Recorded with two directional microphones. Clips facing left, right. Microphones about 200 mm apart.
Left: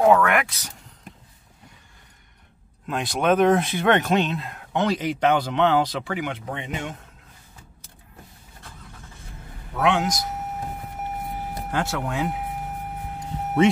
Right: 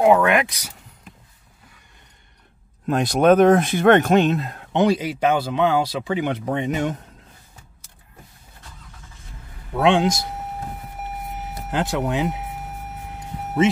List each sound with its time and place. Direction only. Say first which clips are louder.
0.0 s speech: right 2 dB; 15° right (ahead or behind)
2.9 s speech: right 6 dB; 40° right (ahead or behind)
4.7 s speech: right 4 dB; 10° right (ahead or behind)
6.1 s speech: right 11 dB; 35° right (ahead or behind)
9.8 s a man's voice: right 4 dB; 30° right (ahead or behind)
11.7 s speech: right 4 dB; 15° right (ahead or behind)